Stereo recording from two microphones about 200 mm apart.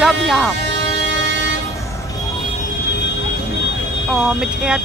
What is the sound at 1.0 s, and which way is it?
Vehicle, 60° right (ahead or behind).